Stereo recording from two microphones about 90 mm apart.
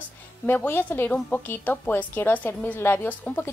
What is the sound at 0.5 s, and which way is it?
A woman's voice, 20° left (ahead or behind).